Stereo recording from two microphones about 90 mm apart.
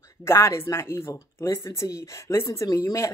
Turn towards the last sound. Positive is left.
turn(degrees=35)  # may be behind; listen again after turning